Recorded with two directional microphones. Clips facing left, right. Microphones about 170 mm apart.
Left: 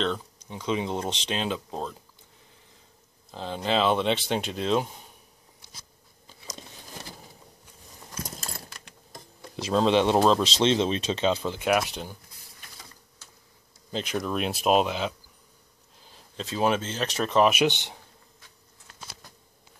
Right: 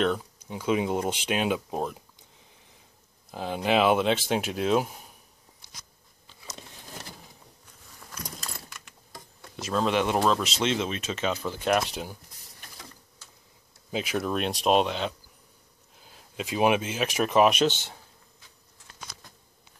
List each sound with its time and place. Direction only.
0.0 s speech: 10° right (ahead or behind)
3.3 s speech: 10° right (ahead or behind)
8.1 s keys jangling: 25° left (ahead or behind)
9.8 s speech: 30° left (ahead or behind)
11.9 s speech: 5° right (ahead or behind)
13.9 s speech: 5° right (ahead or behind)
17.5 s speech: 15° left (ahead or behind)